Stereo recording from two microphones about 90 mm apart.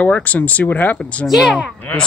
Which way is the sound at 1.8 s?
20° left (ahead or behind).